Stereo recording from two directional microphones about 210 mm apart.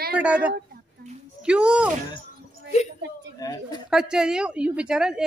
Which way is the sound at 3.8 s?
5° right (ahead or behind).